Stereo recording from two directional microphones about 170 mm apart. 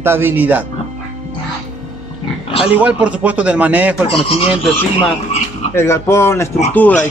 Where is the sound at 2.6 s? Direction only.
10° right (ahead or behind).